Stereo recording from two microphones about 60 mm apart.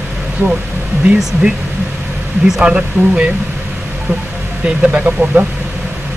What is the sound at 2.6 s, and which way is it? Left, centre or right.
Speech, centre.